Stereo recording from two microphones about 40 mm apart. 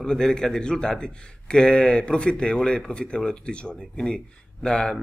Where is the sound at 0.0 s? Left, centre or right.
Centre.